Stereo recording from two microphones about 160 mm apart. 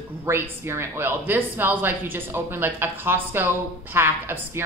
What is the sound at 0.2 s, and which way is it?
Speech, 15° right (ahead or behind).